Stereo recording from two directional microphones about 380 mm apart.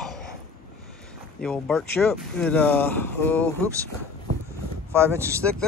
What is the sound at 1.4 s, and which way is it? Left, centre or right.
Speech, centre.